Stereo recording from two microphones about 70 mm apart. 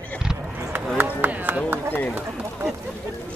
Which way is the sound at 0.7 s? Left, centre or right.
Right.